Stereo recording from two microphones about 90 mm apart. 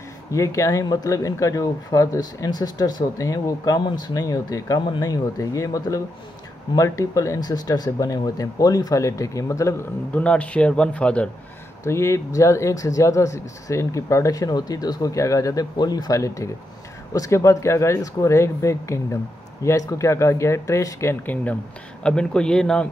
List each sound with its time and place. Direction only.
0.3 s speech: 35° left (ahead or behind)
10.1 s speech: 15° left (ahead or behind)
11.8 s speech: 35° left (ahead or behind)
22.0 s speech: 10° left (ahead or behind)